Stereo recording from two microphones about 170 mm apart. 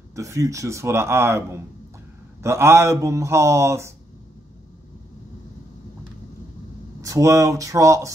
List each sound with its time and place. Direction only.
0.1 s a man's voice: 20° right (ahead or behind)
7.0 s speech: 20° right (ahead or behind)